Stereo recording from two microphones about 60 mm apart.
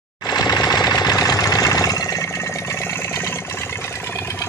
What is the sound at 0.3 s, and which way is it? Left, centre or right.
Jackhammer, left.